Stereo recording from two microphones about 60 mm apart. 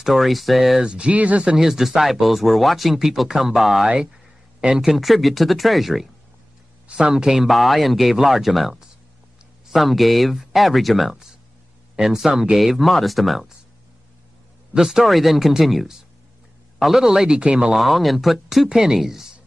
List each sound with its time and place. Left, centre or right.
0.0 s speech: centre
0.9 s speech: right
1.6 s speech: centre
6.9 s speech: centre
14.7 s speech: centre
17.4 s speech: centre
17.7 s speech: centre